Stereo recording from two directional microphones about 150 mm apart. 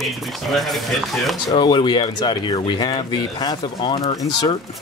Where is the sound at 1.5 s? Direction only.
30° left (ahead or behind).